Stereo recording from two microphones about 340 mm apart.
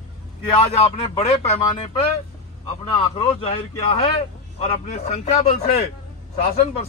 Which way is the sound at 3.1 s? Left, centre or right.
Centre.